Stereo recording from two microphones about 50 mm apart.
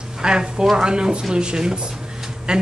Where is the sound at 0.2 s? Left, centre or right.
Centre.